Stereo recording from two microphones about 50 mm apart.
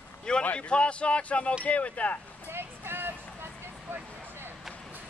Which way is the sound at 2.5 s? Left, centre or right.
Right.